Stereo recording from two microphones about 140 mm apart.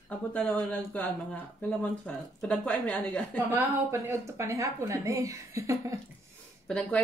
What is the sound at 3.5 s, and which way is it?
A woman's voice, 15° right (ahead or behind).